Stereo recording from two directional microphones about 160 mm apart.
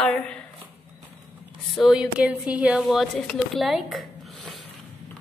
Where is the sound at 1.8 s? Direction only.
5° right (ahead or behind).